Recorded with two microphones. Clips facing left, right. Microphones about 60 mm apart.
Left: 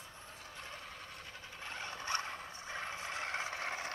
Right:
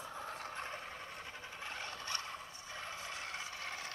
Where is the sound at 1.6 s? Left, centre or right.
Centre.